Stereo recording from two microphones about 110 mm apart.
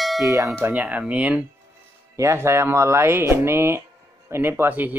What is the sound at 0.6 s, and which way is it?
Speech, 15° right (ahead or behind).